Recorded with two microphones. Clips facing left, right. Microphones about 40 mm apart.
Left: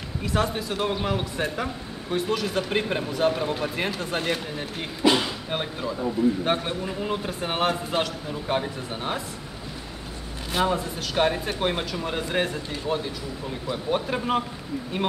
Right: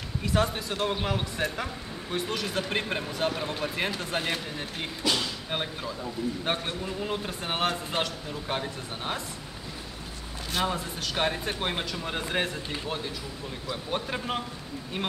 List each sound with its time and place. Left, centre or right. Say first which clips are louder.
0.2 s speech: left 2 dB; centre
5.0 s speech: left 8 dB; left
5.5 s speech: left 4 dB; centre
10.5 s speech: left 5 dB; centre